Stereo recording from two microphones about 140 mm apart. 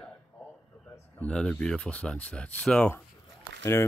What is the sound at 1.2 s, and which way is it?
Speech, 5° left (ahead or behind).